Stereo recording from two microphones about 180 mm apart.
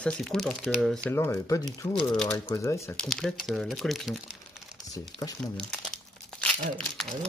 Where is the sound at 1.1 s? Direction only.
15° left (ahead or behind).